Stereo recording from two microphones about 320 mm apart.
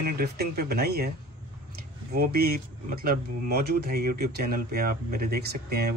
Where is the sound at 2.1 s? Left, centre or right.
Right.